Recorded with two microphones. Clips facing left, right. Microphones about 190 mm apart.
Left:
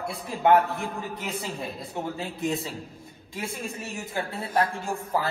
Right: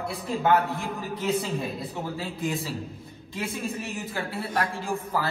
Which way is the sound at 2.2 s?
25° left (ahead or behind).